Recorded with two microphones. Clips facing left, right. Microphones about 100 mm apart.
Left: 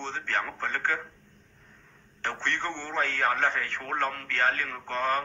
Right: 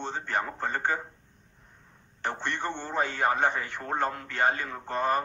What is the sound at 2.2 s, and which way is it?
A man's voice, 15° right (ahead or behind).